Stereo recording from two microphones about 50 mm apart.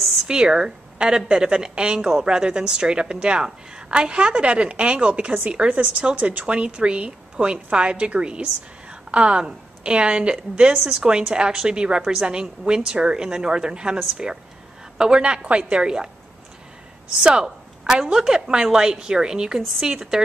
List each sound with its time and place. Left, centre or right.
0.3 s a woman's voice: centre
17.2 s a woman's voice: centre